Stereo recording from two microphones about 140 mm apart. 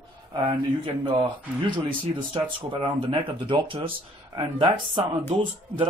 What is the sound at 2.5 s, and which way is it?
Speech, 40° right (ahead or behind).